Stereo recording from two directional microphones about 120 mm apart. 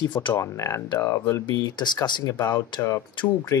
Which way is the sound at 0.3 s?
25° left (ahead or behind).